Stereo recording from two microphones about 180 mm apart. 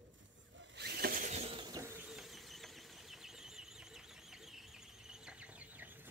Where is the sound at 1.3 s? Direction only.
35° right (ahead or behind).